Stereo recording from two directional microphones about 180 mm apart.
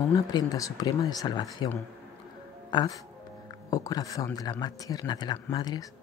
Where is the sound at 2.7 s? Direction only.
20° left (ahead or behind).